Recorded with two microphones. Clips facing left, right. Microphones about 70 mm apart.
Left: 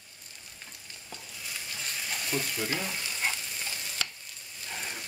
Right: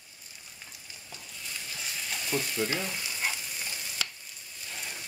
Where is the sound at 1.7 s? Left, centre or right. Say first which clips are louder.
Left 1 dB; centre.